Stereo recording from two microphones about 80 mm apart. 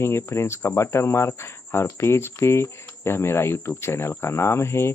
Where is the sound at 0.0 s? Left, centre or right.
Left.